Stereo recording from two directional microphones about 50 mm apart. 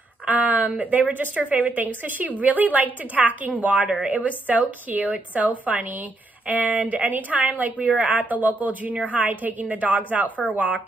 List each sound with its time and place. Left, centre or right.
0.3 s a woman's voice: right